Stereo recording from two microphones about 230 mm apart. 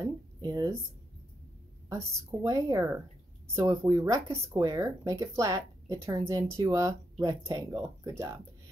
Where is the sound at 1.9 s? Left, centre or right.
Centre.